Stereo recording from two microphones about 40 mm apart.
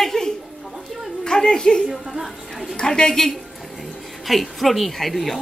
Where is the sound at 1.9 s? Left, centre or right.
Centre.